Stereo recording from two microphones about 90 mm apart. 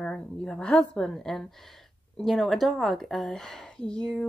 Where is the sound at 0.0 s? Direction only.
10° left (ahead or behind).